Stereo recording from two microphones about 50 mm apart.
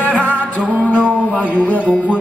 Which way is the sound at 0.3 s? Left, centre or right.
Left.